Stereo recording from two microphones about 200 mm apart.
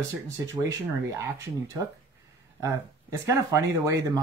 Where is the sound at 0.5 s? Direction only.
15° right (ahead or behind).